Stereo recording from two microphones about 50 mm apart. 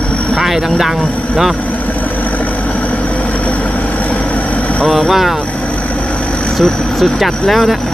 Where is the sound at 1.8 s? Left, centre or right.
Left.